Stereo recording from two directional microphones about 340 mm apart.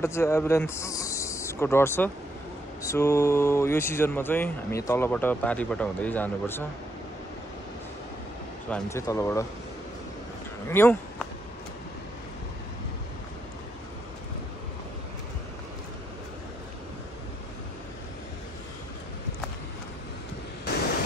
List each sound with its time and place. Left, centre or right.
0.0 s speech: centre
8.6 s speech: centre
10.7 s speech: centre